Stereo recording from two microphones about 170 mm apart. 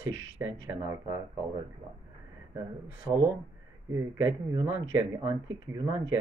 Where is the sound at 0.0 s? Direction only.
15° right (ahead or behind).